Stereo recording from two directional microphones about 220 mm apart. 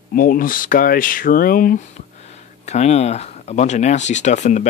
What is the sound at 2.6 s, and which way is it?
Speech, 30° left (ahead or behind).